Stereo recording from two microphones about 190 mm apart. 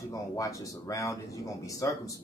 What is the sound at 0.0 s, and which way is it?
Speech, 15° left (ahead or behind).